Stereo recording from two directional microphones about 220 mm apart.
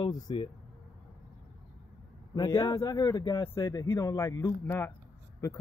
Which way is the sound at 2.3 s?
15° left (ahead or behind).